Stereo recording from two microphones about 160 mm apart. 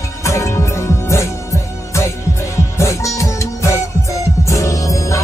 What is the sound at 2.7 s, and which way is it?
Music, 20° left (ahead or behind).